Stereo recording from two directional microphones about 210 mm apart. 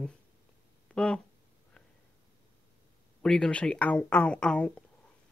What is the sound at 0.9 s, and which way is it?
Speech, 5° left (ahead or behind).